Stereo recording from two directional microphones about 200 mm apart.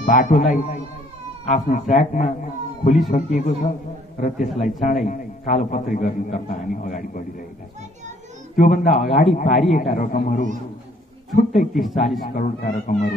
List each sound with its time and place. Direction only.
0.0 s a man's voice: 40° left (ahead or behind)
8.5 s a man's voice: 40° left (ahead or behind)